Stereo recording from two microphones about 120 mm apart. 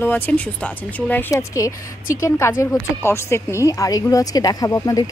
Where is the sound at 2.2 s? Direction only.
25° left (ahead or behind).